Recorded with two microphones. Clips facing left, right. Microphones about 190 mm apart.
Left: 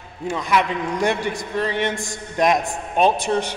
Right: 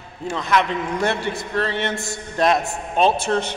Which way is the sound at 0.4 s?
10° left (ahead or behind).